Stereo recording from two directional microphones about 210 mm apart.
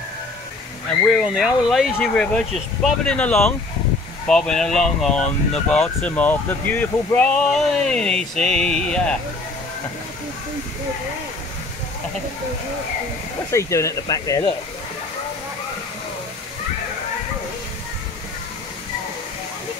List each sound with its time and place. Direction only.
1.0 s speech: centre (ahead or behind)
13.5 s speech: 15° left (ahead or behind)